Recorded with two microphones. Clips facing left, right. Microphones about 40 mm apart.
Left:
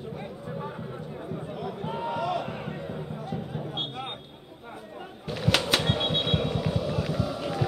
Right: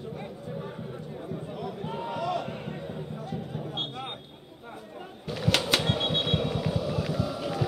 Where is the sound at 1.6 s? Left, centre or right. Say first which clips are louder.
Left 3 dB; centre.